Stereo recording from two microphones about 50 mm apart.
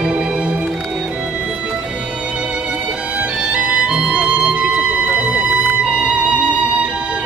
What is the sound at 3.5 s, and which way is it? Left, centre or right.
Music, right.